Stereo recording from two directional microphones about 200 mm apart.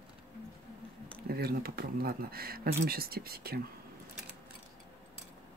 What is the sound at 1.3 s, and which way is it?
Speech, 50° right (ahead or behind).